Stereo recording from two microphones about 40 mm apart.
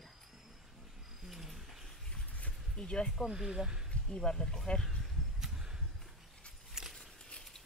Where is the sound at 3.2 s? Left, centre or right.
Centre.